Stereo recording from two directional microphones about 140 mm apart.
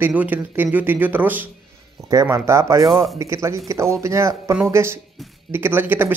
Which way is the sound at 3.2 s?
20° right (ahead or behind).